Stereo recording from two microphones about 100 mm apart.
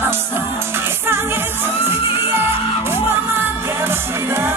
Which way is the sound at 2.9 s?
25° right (ahead or behind).